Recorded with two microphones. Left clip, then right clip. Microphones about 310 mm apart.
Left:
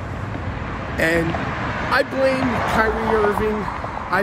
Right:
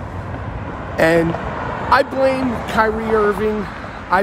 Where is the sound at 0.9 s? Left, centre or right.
Centre.